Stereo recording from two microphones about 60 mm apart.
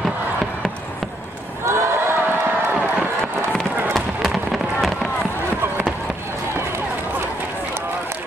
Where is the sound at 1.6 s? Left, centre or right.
Right.